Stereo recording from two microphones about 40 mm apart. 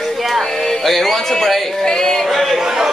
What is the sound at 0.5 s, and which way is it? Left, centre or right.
Speech, centre.